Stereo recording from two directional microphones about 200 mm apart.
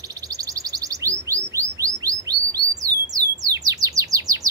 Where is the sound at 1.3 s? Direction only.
15° right (ahead or behind).